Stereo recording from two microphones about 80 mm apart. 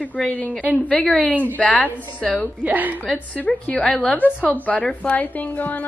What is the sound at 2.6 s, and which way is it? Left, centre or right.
Speech, right.